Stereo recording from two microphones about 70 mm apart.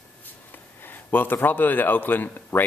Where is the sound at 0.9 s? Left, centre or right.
Left.